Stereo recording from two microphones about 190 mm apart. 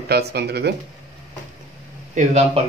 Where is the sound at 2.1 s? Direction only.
40° right (ahead or behind).